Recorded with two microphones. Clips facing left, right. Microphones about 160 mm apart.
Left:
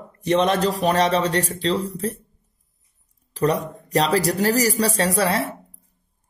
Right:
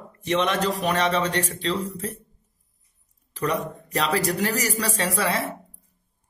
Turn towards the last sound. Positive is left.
turn(degrees=35)  # may be behind; listen again after turning